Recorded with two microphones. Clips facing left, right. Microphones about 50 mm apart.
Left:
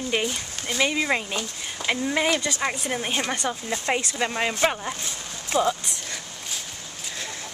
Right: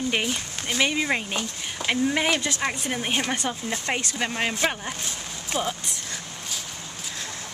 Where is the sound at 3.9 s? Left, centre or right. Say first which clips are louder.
Left 3 dB; centre.